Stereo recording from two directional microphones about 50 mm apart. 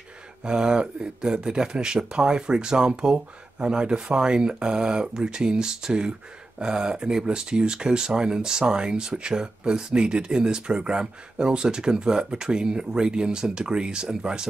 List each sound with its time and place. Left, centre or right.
0.4 s speech: centre